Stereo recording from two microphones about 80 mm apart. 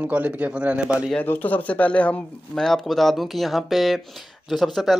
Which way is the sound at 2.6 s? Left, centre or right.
Centre.